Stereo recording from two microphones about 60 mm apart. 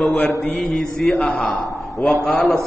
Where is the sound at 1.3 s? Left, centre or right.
Centre.